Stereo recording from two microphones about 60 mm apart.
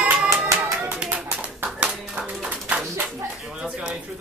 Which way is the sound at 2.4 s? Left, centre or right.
Centre.